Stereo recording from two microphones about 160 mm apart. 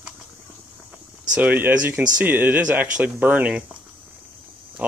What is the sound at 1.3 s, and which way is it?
Speech, 10° right (ahead or behind).